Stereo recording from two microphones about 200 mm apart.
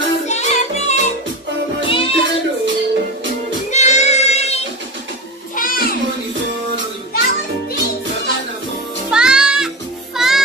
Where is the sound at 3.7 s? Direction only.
35° left (ahead or behind).